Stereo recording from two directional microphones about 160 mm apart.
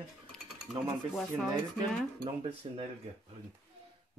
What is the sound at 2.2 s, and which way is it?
Speech, 35° right (ahead or behind).